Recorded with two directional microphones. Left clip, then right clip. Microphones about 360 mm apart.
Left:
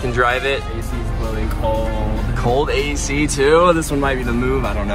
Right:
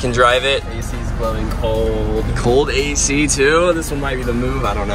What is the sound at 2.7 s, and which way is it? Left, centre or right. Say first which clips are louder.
Speech: right 2 dB; centre.